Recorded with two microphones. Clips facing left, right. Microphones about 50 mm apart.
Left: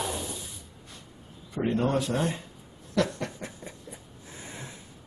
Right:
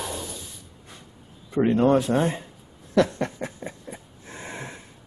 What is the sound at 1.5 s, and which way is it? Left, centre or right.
Speech, right.